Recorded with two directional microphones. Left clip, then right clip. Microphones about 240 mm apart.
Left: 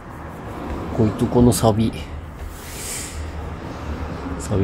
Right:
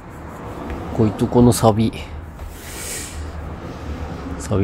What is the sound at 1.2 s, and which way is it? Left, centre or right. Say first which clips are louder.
Speech: right 2 dB; centre.